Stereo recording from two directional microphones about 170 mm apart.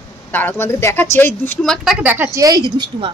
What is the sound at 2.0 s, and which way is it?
A woman's voice, 10° right (ahead or behind).